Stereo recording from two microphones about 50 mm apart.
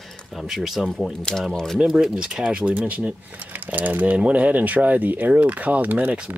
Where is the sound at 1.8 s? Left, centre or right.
Centre.